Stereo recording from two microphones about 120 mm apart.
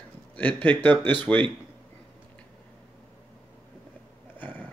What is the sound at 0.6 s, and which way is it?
Speech, 15° left (ahead or behind).